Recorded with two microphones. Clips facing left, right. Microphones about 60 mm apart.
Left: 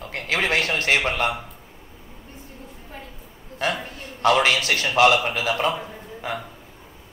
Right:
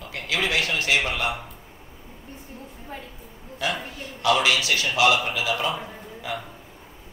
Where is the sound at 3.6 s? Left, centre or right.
Left.